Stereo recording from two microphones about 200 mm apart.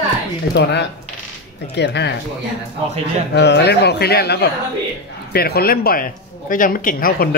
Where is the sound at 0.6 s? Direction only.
60° left (ahead or behind).